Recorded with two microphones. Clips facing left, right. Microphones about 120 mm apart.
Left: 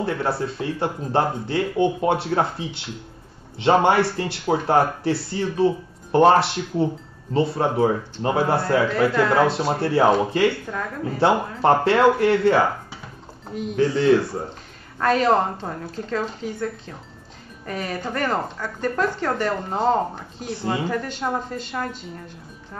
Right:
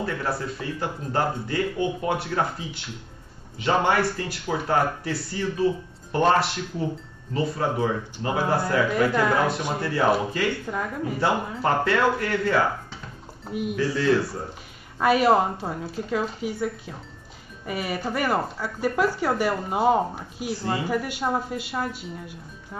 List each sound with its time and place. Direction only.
0.0 s speech: 30° left (ahead or behind)
10.7 s speech: 10° right (ahead or behind)
11.6 s speech: 30° left (ahead or behind)
13.5 s speech: 10° right (ahead or behind)
13.7 s speech: 25° left (ahead or behind)
15.0 s speech: 10° right (ahead or behind)
20.6 s speech: 20° left (ahead or behind)
20.9 s speech: 10° right (ahead or behind)